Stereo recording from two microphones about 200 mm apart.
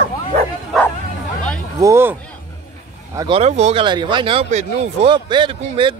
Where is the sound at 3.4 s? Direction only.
35° right (ahead or behind).